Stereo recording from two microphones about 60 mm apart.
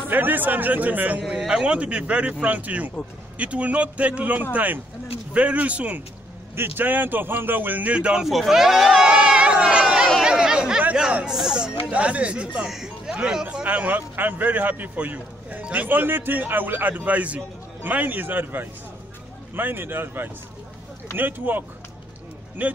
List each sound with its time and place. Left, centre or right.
0.1 s a man's voice: right
1.5 s speech: centre
6.5 s a man's voice: right; by 8.3 s centre
8.3 s speech: centre
9.0 s a sound: centre
10.2 s chatter: centre
11.0 s speech: centre
11.3 s chatter: centre
11.9 s speech: right
12.6 s a man's voice: centre; by 22.7 s right